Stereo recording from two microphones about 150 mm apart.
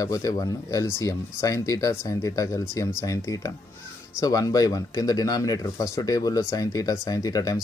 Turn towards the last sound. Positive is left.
turn(degrees=25)  # may be behind; listen again after turning